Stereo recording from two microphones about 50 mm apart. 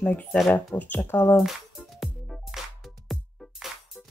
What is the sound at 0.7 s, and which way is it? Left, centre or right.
Speech, left.